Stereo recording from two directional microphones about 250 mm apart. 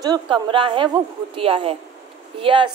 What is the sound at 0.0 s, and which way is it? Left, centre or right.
Speech, centre.